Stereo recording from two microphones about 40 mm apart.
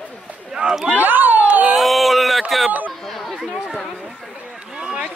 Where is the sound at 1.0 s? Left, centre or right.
Right.